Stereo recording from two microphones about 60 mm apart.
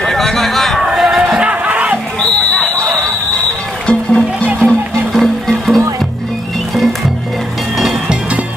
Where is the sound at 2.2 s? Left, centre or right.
Centre.